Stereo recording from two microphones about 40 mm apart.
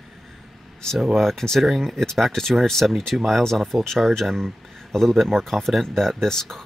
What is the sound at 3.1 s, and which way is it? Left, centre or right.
Speech, centre.